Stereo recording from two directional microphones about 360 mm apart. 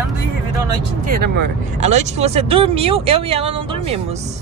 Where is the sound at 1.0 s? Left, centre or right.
Right.